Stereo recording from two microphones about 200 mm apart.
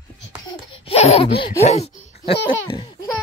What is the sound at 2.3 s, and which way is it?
Babbling, 70° left (ahead or behind).